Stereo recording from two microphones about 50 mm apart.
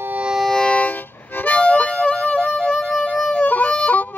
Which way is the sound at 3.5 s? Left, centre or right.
Left.